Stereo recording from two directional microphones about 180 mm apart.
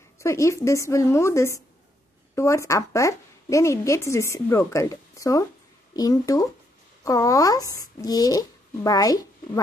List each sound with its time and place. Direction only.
0.2 s a woman's voice: 15° left (ahead or behind)